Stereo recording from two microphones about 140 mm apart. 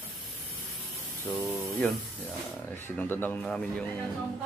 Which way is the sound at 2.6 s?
15° left (ahead or behind).